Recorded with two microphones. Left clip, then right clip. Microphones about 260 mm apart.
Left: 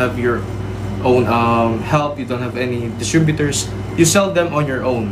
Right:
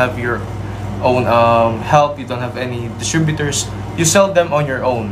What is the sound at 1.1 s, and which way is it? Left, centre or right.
Speech, centre.